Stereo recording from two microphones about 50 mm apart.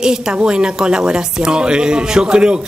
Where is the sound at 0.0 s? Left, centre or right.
Centre.